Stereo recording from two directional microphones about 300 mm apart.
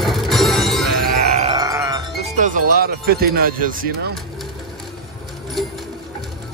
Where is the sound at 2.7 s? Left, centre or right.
Right.